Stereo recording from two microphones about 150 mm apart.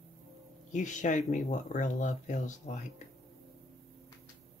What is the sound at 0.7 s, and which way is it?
Speech, 55° left (ahead or behind).